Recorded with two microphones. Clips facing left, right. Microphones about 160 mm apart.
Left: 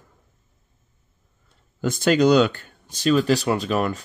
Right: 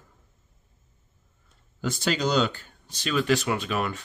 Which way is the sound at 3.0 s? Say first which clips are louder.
Left 5 dB; 35° left (ahead or behind).